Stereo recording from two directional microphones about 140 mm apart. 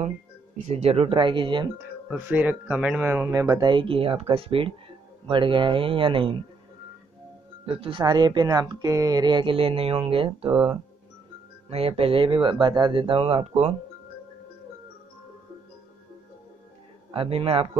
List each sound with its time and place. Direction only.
0.6 s a man's voice: 55° right (ahead or behind); by 1.7 s 35° right (ahead or behind)
1.8 s a man's voice: 10° right (ahead or behind); by 6.3 s 40° right (ahead or behind)
7.6 s a man's voice: 40° right (ahead or behind)
11.7 s a man's voice: 45° right (ahead or behind)
17.1 s a man's voice: 40° right (ahead or behind)